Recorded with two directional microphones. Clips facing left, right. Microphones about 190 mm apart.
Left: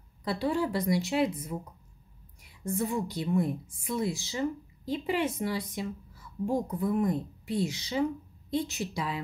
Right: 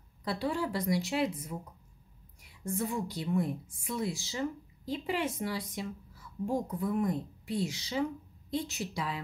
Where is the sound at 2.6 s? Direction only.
20° left (ahead or behind).